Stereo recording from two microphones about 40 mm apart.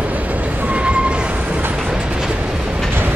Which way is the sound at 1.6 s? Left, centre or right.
Right.